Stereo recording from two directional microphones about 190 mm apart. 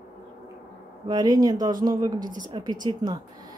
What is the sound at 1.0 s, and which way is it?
Speech, 20° right (ahead or behind).